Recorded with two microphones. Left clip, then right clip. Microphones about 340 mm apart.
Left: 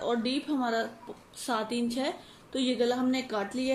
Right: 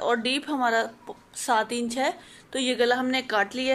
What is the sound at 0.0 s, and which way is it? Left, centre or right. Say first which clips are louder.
A woman's voice: right 5 dB; right.